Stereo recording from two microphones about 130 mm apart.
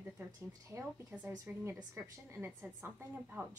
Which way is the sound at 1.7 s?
20° right (ahead or behind).